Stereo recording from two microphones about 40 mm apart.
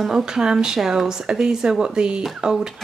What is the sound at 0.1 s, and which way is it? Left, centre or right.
Speech, centre.